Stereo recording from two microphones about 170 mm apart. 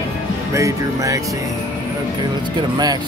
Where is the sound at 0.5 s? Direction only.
20° right (ahead or behind).